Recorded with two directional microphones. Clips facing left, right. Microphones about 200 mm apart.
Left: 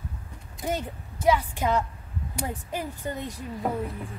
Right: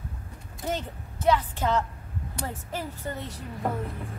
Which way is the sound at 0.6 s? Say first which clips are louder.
Left 2 dB; 10° left (ahead or behind).